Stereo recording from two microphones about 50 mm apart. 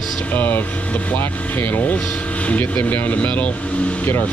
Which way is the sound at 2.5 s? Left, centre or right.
Left.